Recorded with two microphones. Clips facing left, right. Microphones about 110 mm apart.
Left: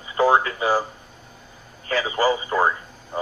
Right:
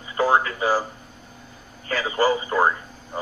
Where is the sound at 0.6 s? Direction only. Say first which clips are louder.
Left 1 dB; 15° left (ahead or behind).